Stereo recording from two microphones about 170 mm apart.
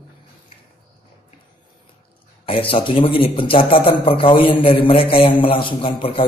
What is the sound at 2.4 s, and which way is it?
Speech, 30° left (ahead or behind).